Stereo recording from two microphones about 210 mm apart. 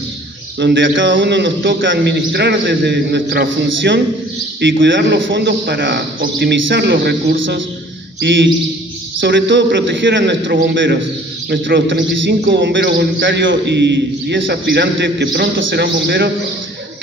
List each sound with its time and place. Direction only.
0.6 s a man's voice: 60° right (ahead or behind)
3.6 s a man's voice: 55° right (ahead or behind)
9.2 s a man's voice: 60° right (ahead or behind)